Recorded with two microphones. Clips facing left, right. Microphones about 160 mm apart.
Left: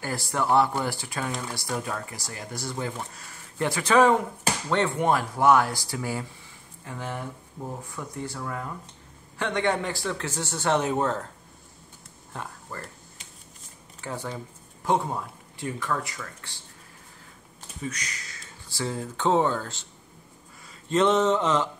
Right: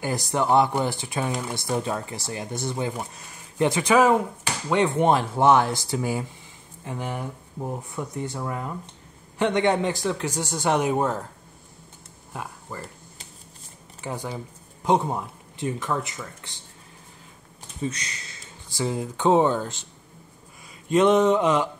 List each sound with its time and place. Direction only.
0.0 s speech: 20° right (ahead or behind)
3.9 s a man's voice: 10° right (ahead or behind)
4.9 s a man's voice: 25° right (ahead or behind)
12.3 s speech: 10° right (ahead or behind)
14.0 s speech: 15° right (ahead or behind)
17.8 s speech: 25° right (ahead or behind)
20.9 s a man's voice: 15° right (ahead or behind)